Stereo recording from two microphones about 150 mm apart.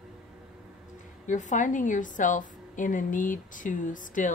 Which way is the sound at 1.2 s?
55° left (ahead or behind).